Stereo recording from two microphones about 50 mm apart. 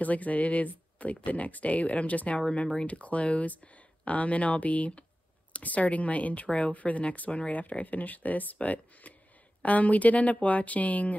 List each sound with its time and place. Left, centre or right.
0.0 s speech: left